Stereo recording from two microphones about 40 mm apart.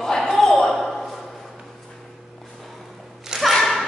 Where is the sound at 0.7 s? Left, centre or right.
Centre.